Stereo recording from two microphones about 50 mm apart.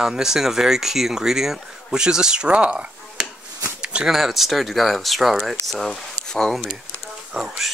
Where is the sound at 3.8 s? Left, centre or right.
Centre.